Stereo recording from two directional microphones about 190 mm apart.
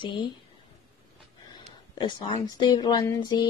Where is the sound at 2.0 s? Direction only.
25° left (ahead or behind).